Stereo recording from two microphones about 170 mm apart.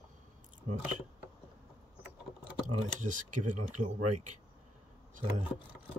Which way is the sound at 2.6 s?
45° right (ahead or behind).